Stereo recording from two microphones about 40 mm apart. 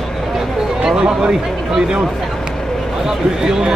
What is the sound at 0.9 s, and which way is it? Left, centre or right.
Speech, right.